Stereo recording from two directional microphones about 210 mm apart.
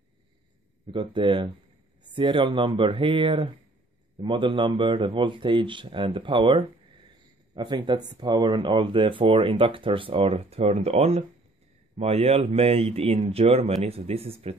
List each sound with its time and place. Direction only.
0.9 s speech: 25° right (ahead or behind)